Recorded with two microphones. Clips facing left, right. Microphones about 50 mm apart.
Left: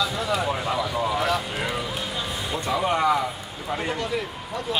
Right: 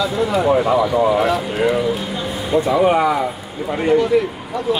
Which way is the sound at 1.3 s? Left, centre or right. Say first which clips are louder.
Right 8 dB; centre.